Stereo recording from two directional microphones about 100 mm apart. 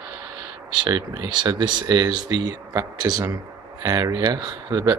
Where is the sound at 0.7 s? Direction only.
45° right (ahead or behind).